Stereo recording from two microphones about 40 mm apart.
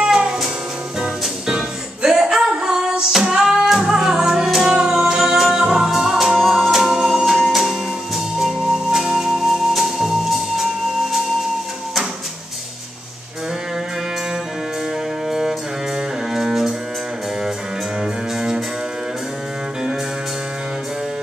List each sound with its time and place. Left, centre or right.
0.1 s music: centre
2.0 s singing: centre
3.1 s female singing: centre
3.6 s music: centre
8.4 s music: centre
15.2 s music: centre
16.3 s cello: centre